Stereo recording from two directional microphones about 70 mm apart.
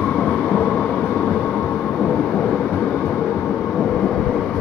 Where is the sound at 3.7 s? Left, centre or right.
Centre.